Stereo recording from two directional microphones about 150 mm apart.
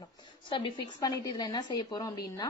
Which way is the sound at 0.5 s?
35° left (ahead or behind).